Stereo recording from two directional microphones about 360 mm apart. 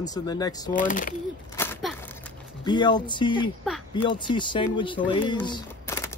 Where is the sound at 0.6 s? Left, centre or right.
Left.